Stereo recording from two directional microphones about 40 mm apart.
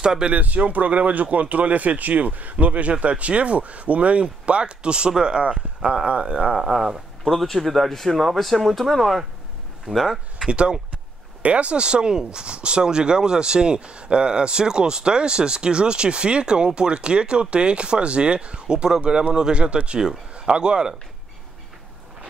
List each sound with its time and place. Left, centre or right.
0.0 s speech: right
0.3 s speech: right
6.5 s speech: centre
7.2 s speech: centre
9.8 s speech: centre
10.5 s a man's voice: right